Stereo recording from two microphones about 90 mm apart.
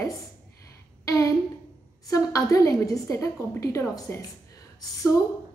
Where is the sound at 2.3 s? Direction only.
35° left (ahead or behind).